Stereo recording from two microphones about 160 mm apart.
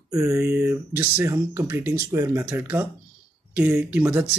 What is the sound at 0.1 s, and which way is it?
Speech, 20° right (ahead or behind).